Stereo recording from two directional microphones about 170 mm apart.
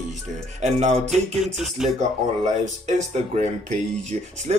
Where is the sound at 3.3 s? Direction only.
45° right (ahead or behind).